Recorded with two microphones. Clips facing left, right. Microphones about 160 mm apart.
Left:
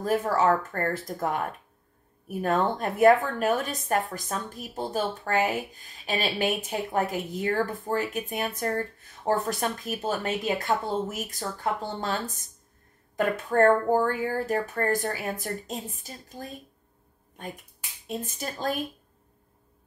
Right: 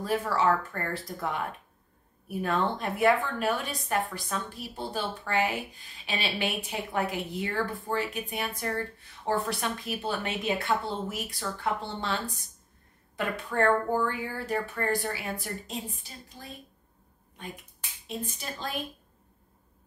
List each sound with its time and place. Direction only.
0.0 s a woman's voice: 45° left (ahead or behind)
18.0 s a woman's voice: 45° left (ahead or behind)